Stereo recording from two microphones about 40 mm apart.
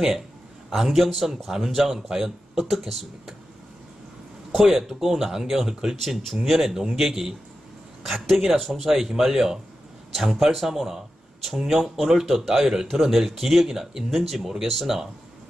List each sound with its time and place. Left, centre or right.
0.7 s speech: centre
4.8 s speech: centre